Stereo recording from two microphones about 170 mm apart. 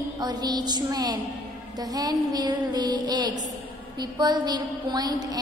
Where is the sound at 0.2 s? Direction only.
25° right (ahead or behind).